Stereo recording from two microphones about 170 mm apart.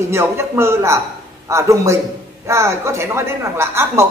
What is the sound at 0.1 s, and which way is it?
A woman's voice, 15° right (ahead or behind).